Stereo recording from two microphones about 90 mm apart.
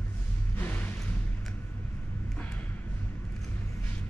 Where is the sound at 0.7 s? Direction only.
20° left (ahead or behind).